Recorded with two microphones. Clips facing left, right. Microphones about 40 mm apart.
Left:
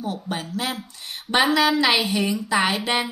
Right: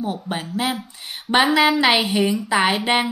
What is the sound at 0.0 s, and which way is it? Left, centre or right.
Speech, right.